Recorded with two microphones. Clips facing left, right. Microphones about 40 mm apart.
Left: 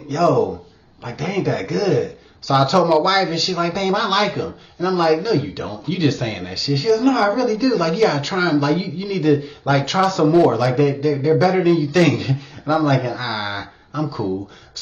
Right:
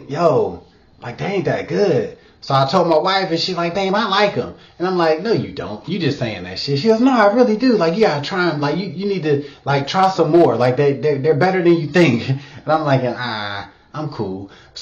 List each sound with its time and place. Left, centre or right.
0.1 s a man's voice: centre
6.9 s a woman's voice: right
7.4 s a woman's voice: centre
7.7 s speech: centre
10.8 s a woman's voice: right
11.6 s a man's voice: centre